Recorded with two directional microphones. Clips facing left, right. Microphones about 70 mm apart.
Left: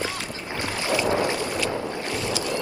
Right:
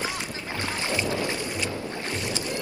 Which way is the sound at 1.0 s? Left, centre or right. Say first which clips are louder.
Left 5 dB; left.